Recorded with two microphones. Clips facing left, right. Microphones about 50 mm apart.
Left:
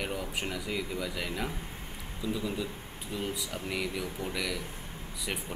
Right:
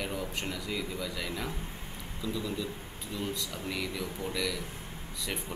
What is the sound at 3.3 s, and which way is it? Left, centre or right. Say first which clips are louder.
Speech: left 1 dB; centre.